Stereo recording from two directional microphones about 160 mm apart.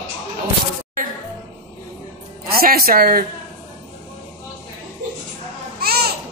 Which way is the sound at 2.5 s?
70° right (ahead or behind).